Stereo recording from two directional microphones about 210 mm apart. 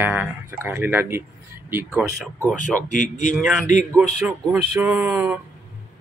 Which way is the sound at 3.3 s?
5° right (ahead or behind).